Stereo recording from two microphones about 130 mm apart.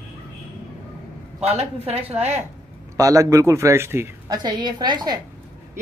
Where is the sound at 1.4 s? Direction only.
50° right (ahead or behind).